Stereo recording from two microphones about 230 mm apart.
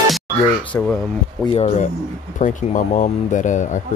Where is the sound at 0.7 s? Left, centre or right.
Centre.